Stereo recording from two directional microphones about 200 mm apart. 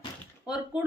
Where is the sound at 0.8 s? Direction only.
5° right (ahead or behind).